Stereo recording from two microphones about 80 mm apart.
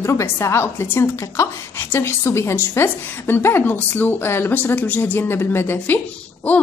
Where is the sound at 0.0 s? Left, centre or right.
Left.